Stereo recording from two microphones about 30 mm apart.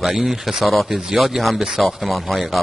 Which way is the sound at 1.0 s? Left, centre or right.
Centre.